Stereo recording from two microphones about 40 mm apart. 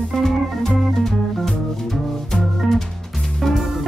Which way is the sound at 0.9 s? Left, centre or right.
Centre.